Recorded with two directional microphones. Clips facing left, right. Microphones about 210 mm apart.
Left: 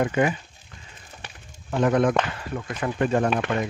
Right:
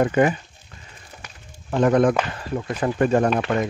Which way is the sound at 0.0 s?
45° right (ahead or behind).